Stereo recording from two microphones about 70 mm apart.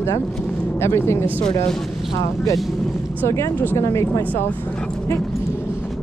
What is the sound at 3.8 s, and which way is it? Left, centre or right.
Speech, left.